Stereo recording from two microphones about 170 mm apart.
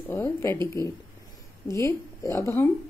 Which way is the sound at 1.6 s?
15° left (ahead or behind).